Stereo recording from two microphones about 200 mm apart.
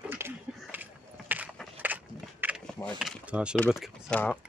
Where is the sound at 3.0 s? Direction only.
5° right (ahead or behind).